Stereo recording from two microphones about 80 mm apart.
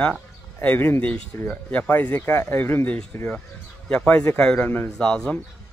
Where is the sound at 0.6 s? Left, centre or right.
Left.